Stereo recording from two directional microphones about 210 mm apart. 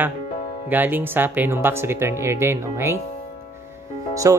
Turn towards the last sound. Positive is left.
turn(degrees=-15)  # may be behind; listen again after turning